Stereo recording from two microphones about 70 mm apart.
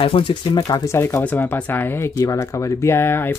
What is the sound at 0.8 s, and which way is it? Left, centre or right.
Speech, left.